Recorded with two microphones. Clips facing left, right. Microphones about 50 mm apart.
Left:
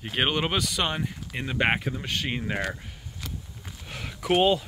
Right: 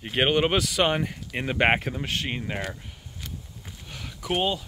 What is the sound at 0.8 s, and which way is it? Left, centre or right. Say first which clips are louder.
Speech: right 5 dB; right.